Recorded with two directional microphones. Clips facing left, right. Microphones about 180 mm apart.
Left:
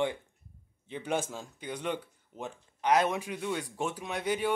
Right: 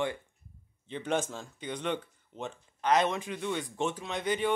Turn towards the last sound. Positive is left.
turn(degrees=10)  # may be behind; listen again after turning